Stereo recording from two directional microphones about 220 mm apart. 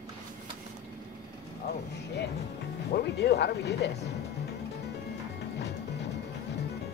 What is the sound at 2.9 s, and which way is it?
Speech, 45° left (ahead or behind).